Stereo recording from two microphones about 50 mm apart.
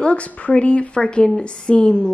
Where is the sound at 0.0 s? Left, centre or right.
Left.